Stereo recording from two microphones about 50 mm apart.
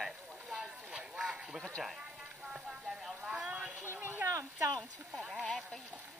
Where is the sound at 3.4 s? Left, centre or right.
Right.